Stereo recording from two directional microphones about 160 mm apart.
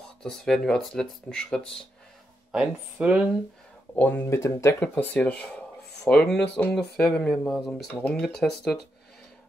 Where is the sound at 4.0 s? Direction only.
10° left (ahead or behind).